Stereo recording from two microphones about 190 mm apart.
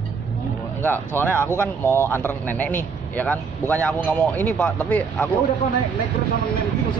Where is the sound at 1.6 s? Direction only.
10° left (ahead or behind).